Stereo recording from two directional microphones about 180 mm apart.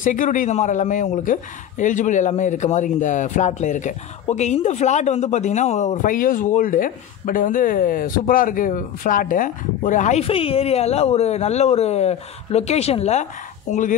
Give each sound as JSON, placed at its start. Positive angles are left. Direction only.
{"t": 0.0, "sound": "speech", "side_deg": 45}